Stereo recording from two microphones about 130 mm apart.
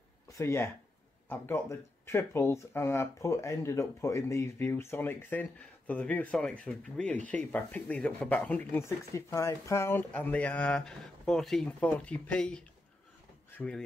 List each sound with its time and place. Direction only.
0.3 s speech: 20° left (ahead or behind)